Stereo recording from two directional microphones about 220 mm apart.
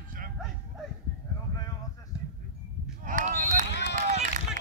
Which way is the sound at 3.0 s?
35° right (ahead or behind).